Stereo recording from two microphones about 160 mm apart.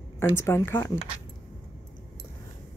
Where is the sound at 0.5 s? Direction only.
15° left (ahead or behind).